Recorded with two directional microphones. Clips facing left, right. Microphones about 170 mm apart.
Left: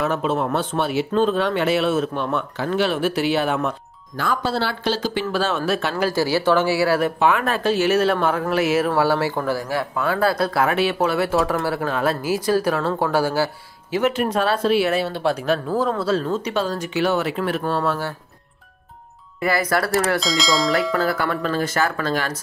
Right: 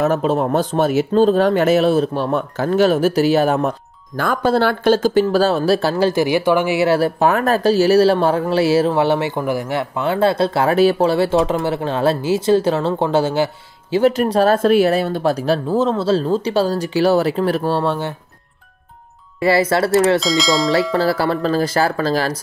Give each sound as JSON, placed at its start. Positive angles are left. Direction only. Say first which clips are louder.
{"t": 0.0, "sound": "speech", "louder": "right 5 dB", "side_deg": -40}
{"t": 4.2, "sound": "speech", "louder": "right 6 dB", "side_deg": -50}
{"t": 5.2, "sound": "speech", "louder": "right 7 dB", "side_deg": -35}
{"t": 6.1, "sound": "speech", "louder": "right 3 dB", "side_deg": -20}
{"t": 7.0, "sound": "speech", "louder": "right 3 dB", "side_deg": -40}
{"t": 19.4, "sound": "speech", "louder": "right 5 dB", "side_deg": -25}
{"t": 20.2, "sound": "speech", "louder": "right 4 dB", "side_deg": 0}
{"t": 20.9, "sound": "speech", "louder": "right 4 dB", "side_deg": -30}